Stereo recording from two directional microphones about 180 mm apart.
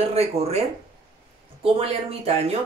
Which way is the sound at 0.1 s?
35° right (ahead or behind).